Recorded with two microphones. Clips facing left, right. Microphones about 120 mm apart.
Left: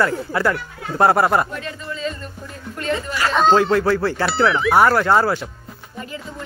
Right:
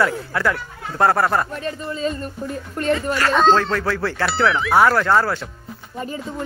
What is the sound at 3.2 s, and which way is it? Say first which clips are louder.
Speech: left 2 dB; 5° left (ahead or behind).